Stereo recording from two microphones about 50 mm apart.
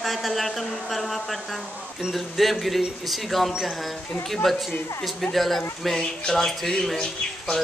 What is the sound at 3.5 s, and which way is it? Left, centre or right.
Speech, centre.